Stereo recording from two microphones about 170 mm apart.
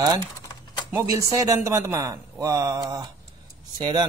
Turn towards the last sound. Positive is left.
turn(degrees=-25)  # may be behind; listen again after turning